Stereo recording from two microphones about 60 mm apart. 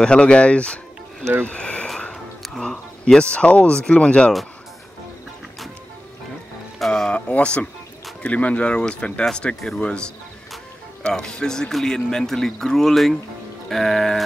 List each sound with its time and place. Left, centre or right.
0.0 s speech: centre
1.4 s a sound: left
2.4 s music: centre
3.2 s speech: left
6.9 s a sound: centre
8.2 s speech: left; by 13.2 s centre
13.7 s music: centre